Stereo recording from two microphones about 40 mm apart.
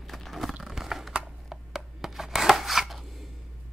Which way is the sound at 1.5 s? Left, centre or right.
Centre.